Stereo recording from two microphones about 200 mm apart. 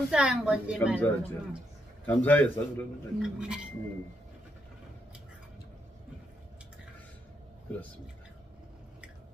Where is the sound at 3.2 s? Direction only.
5° right (ahead or behind).